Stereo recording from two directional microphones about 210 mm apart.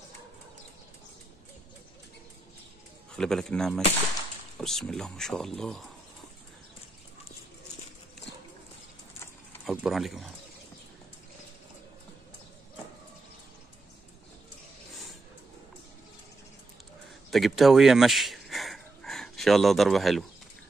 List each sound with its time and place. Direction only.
3.1 s speech: 5° left (ahead or behind)
9.7 s speech: centre (ahead or behind)
17.3 s speech: centre (ahead or behind)